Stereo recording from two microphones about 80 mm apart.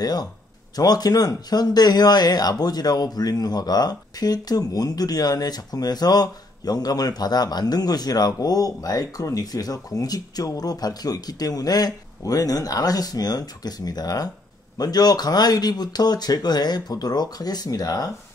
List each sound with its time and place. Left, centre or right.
0.0 s speech: left